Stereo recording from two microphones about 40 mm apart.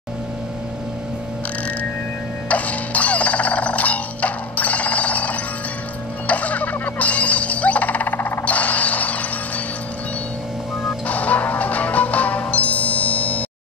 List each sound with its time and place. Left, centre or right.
2.4 s music: left
11.1 s music: left